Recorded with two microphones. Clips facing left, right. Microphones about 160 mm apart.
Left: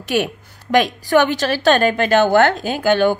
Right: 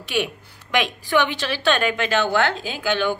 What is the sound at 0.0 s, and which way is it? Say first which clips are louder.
A woman's voice: left 5 dB; 45° left (ahead or behind).